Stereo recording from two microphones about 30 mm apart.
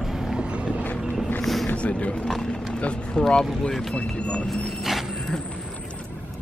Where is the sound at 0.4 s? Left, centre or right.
Right.